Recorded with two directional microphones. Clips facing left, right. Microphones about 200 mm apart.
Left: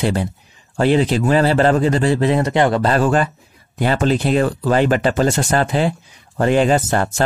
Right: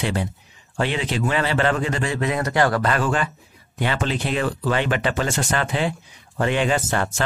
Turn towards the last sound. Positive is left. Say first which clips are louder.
# left 6 dB
turn(degrees=40)  # may be behind; listen again after turning